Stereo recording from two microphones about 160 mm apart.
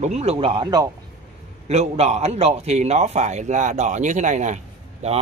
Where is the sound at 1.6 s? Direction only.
40° right (ahead or behind).